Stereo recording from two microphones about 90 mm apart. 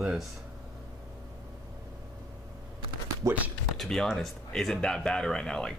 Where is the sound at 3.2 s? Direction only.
35° right (ahead or behind).